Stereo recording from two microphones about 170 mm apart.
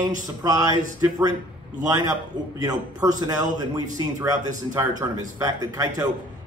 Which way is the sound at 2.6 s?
20° right (ahead or behind).